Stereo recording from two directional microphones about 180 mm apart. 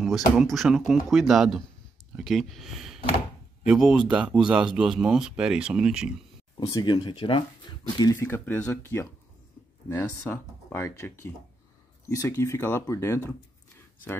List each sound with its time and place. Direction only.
0.0 s speech: centre (ahead or behind)
6.5 s speech: 25° left (ahead or behind)
8.0 s speech: 20° left (ahead or behind)